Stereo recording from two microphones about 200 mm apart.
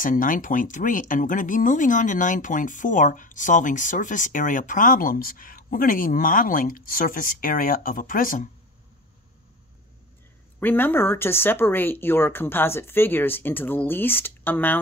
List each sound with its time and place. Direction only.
0.0 s speech: 40° left (ahead or behind)
10.6 s speech: 10° left (ahead or behind)